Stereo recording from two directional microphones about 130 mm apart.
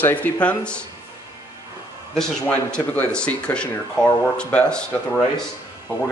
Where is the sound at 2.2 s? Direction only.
5° left (ahead or behind).